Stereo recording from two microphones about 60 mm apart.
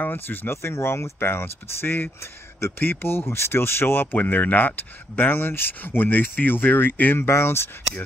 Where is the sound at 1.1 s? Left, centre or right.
Left.